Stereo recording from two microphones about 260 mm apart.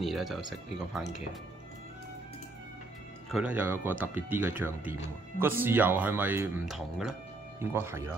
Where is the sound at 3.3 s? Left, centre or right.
Centre.